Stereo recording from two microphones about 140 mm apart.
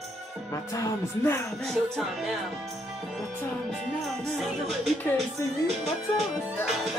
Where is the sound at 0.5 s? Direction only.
20° left (ahead or behind).